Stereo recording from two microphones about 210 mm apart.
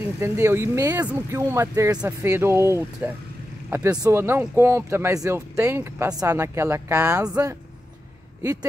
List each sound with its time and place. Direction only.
0.2 s speech: 15° right (ahead or behind)